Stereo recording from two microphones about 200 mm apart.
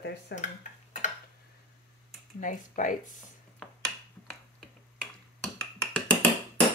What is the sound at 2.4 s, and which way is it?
Speech, 40° left (ahead or behind).